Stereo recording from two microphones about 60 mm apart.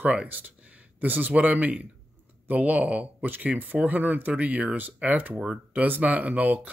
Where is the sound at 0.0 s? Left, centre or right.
Right.